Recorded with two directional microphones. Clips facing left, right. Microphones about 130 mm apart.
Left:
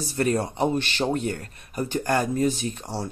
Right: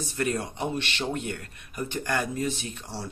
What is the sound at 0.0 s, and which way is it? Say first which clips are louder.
Speech: left 5 dB; 35° left (ahead or behind).